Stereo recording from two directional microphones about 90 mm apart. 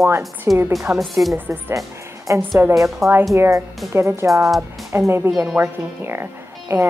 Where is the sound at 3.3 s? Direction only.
35° right (ahead or behind).